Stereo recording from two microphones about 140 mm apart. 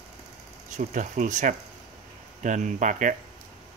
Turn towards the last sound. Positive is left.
turn(degrees=-65)  # may be behind; listen again after turning